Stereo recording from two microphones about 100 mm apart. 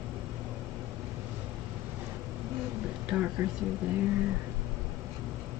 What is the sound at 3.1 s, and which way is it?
Speech, 5° right (ahead or behind).